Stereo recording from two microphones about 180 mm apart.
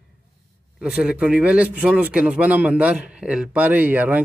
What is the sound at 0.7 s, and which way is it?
Speech, 5° right (ahead or behind).